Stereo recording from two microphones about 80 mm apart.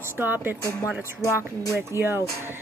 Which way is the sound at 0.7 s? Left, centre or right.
Left.